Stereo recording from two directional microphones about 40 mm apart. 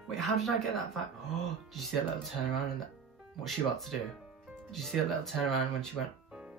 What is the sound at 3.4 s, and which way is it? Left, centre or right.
Speech, centre.